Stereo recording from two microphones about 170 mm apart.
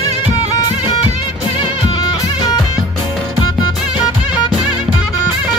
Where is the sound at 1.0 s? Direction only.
30° left (ahead or behind).